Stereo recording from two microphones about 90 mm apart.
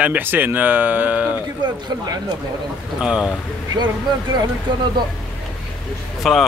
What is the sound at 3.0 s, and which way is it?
Speech, 10° right (ahead or behind).